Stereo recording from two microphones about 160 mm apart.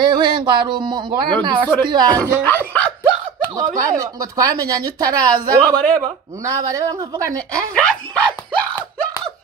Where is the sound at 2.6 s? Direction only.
10° left (ahead or behind).